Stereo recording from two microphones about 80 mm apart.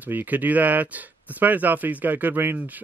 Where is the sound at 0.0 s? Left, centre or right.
Right.